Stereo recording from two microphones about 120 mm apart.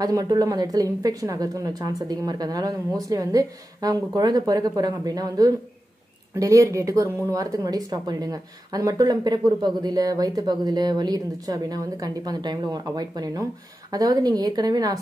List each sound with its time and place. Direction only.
0.0 s speech: 30° right (ahead or behind)